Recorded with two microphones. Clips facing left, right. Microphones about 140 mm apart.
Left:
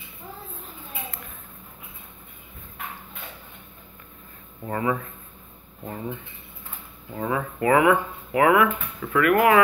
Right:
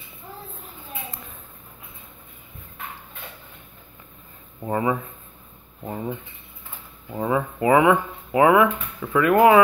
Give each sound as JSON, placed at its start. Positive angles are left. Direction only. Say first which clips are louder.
{"t": 4.6, "sound": "speech", "louder": "right 2 dB", "side_deg": -20}
{"t": 7.1, "sound": "speech", "louder": "right 4 dB", "side_deg": -20}